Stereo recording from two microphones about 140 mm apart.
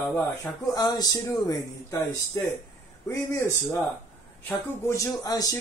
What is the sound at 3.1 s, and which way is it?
Speech, 20° left (ahead or behind).